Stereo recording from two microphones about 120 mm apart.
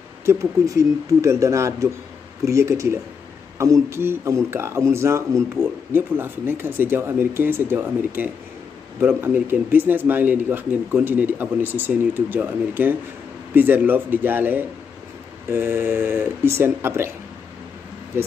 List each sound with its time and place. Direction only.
0.2 s speech: 25° right (ahead or behind)